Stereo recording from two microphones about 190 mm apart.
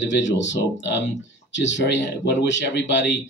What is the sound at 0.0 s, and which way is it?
Speech, 70° left (ahead or behind).